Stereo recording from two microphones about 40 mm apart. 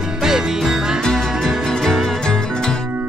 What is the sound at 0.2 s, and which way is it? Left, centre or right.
Music, centre.